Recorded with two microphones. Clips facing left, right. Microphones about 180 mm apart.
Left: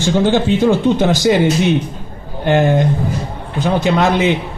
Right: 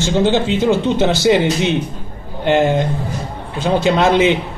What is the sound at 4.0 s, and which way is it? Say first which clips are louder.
Speech: right 3 dB; 20° right (ahead or behind).